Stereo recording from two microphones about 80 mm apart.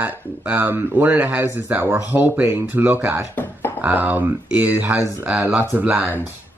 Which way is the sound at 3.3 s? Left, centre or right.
Left.